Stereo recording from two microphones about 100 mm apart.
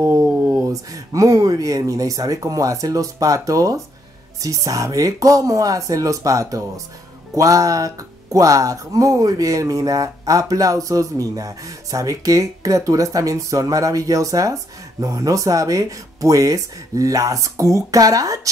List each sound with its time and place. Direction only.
0.0 s speech: 30° right (ahead or behind)
0.3 s a sound: 20° right (ahead or behind)
0.7 s speech: 35° right (ahead or behind)